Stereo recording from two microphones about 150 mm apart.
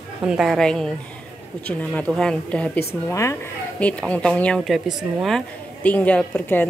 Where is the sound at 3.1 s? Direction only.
20° left (ahead or behind).